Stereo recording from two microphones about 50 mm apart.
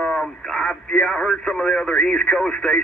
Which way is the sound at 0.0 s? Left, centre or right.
Centre.